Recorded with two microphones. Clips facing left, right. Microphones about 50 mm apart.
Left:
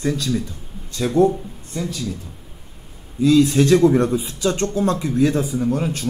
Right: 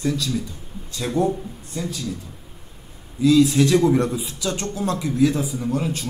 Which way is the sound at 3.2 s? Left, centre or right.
Left.